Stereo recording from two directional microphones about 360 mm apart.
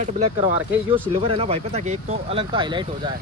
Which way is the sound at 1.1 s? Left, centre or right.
Centre.